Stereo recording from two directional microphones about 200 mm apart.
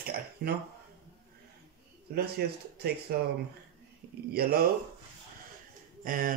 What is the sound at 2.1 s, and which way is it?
Speech, 50° right (ahead or behind).